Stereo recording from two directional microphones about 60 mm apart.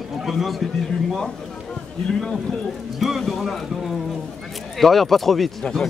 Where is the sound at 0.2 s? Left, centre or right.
Centre.